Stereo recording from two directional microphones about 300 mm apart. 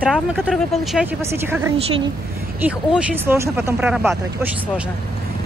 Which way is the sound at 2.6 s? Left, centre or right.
Centre.